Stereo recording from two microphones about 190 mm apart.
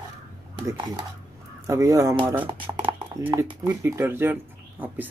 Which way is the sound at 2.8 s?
25° right (ahead or behind).